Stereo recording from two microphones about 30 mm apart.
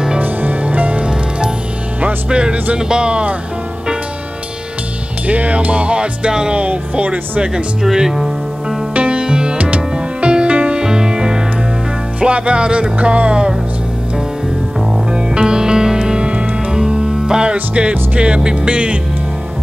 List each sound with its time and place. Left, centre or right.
0.2 s music: right
2.2 s music: right
5.2 s music: right
6.5 s music: right
7.9 s music: centre
9.1 s music: right
10.8 s music: right
12.2 s music: right
15.0 s music: right
16.1 s music: right